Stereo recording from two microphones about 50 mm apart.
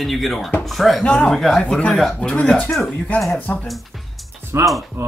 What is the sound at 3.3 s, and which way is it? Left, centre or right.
Speech, left.